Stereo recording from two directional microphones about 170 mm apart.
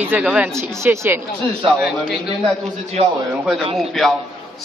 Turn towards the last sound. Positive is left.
turn(degrees=0)  # may be behind; listen again after turning